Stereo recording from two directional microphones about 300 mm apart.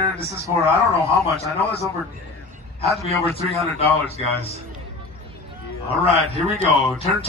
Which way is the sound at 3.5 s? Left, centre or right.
Right.